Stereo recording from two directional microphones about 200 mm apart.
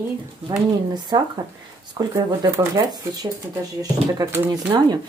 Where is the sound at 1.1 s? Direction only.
20° right (ahead or behind).